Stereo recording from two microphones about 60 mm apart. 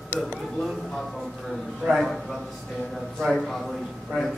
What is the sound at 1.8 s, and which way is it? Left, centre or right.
Speech, right.